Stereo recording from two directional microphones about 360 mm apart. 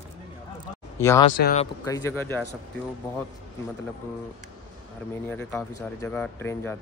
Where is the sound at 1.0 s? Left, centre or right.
Centre.